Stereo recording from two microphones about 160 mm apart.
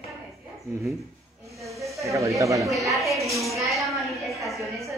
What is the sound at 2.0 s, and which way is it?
Speech, 20° right (ahead or behind).